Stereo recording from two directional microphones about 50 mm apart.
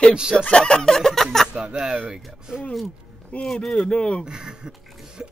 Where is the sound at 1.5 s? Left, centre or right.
Centre.